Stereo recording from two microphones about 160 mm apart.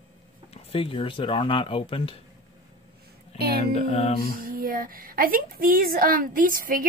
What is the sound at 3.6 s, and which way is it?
Speech, 40° left (ahead or behind).